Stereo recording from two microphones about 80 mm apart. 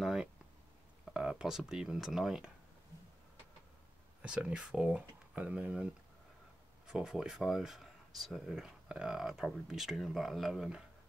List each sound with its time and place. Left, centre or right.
0.0 s speech: centre
4.2 s speech: centre
6.9 s speech: centre